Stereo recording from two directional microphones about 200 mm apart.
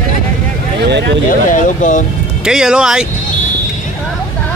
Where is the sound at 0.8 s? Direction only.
55° right (ahead or behind).